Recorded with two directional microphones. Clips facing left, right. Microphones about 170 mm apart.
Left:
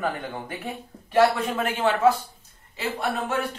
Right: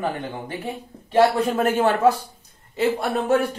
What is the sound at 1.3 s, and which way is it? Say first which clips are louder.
Speech: right 7 dB; 40° right (ahead or behind).